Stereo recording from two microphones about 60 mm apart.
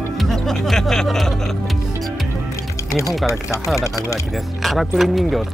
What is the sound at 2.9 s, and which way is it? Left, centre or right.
Speech, left.